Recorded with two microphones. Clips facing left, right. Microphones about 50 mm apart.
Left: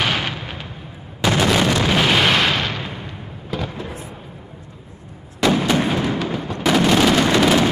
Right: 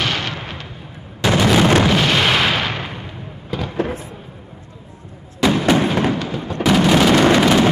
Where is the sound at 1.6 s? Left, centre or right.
Right.